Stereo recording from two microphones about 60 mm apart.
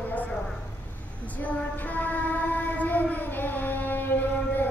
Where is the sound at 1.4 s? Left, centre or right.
Left.